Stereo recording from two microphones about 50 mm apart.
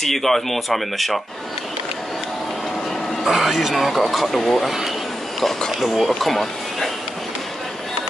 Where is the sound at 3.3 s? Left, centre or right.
Centre.